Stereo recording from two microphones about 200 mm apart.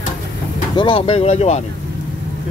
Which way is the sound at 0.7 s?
25° left (ahead or behind).